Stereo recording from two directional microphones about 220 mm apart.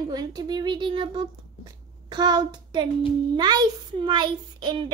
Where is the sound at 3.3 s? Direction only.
20° right (ahead or behind).